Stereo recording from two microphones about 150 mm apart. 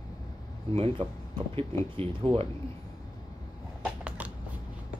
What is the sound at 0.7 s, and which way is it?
Speech, 35° right (ahead or behind).